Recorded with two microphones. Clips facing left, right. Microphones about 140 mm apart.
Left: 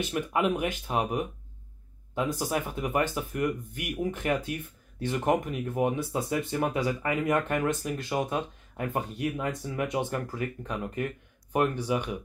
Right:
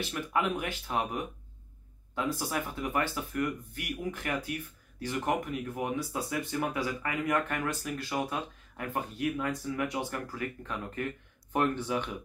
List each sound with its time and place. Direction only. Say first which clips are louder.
0.0 s speech: left 4 dB; 20° left (ahead or behind)